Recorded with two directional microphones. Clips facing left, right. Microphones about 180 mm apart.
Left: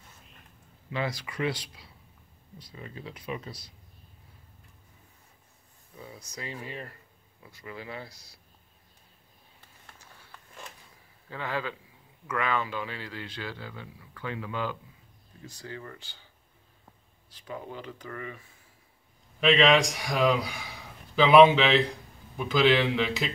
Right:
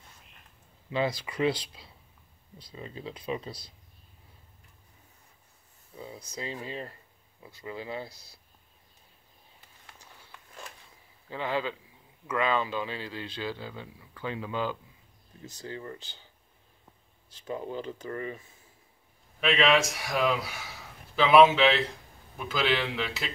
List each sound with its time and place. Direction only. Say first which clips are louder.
0.8 s speech: right 3 dB; 25° right (ahead or behind)
5.9 s speech: right 3 dB; 30° right (ahead or behind)
11.2 s speech: right 2 dB; 20° right (ahead or behind)
17.3 s speech: right 4 dB; 25° right (ahead or behind)
19.4 s a man's voice: left 3 dB; centre (ahead or behind)